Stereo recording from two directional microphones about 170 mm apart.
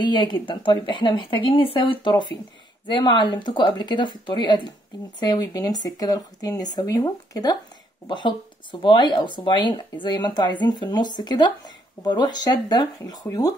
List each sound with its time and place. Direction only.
0.0 s speech: 25° left (ahead or behind)